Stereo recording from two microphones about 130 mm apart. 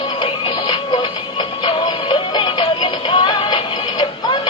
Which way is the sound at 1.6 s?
35° left (ahead or behind).